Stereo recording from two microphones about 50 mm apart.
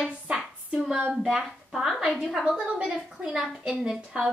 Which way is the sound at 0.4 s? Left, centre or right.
Centre.